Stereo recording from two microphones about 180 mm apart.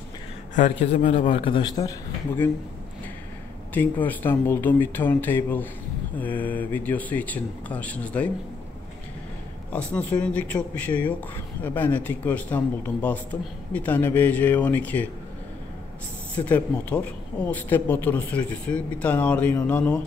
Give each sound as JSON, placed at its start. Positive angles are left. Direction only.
{"t": 0.6, "sound": "a man's voice", "side_deg": 45}
{"t": 1.4, "sound": "a man's voice", "side_deg": 25}
{"t": 3.7, "sound": "a man's voice", "side_deg": 10}
{"t": 9.7, "sound": "a man's voice", "side_deg": 5}
{"t": 16.3, "sound": "a man's voice", "side_deg": 10}